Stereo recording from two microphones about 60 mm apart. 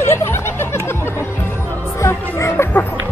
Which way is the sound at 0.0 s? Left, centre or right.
Left.